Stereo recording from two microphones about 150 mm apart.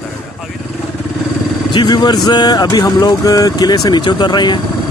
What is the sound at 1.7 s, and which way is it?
Speech, 30° left (ahead or behind).